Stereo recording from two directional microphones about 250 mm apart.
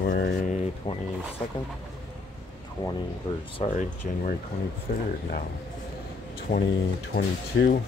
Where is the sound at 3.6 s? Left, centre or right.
Left.